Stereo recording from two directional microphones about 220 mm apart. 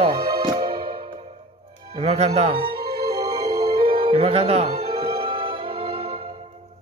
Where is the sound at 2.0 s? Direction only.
30° right (ahead or behind).